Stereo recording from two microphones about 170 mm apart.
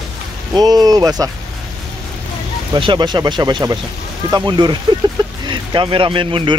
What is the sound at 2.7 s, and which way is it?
Speech, 30° right (ahead or behind).